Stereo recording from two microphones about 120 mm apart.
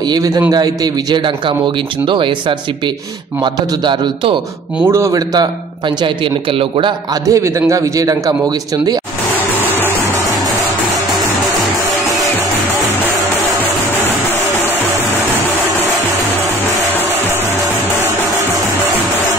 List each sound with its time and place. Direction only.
0.1 s a man's voice: 30° right (ahead or behind)
2.0 s a man's voice: 45° right (ahead or behind)
3.8 s a man's voice: 40° right (ahead or behind)
4.8 s a man's voice: 25° right (ahead or behind)
7.2 s a man's voice: 25° right (ahead or behind)